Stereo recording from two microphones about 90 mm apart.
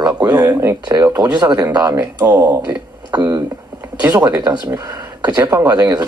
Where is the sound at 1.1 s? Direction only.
45° right (ahead or behind).